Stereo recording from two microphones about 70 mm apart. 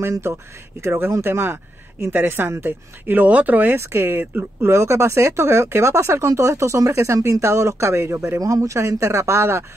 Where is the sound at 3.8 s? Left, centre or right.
Right.